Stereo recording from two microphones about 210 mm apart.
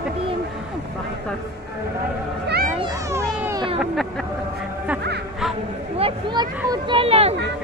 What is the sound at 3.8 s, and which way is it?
Speech, centre (ahead or behind).